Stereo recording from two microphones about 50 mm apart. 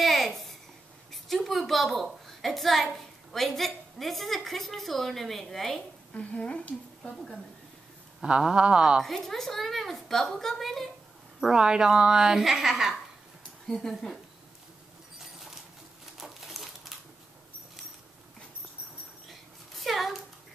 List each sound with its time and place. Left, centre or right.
0.0 s babbling: centre
1.1 s a woman's voice: centre
6.1 s a woman's voice: left
8.2 s a woman's voice: centre
9.0 s a woman's voice: centre
11.4 s a woman's voice: centre
13.7 s a woman's voice: centre
16.2 s crumpling: centre
19.7 s a sound: centre